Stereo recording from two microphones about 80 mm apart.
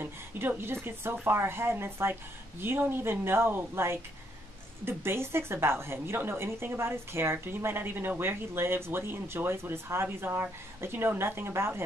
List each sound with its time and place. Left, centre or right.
0.0 s a woman's voice: right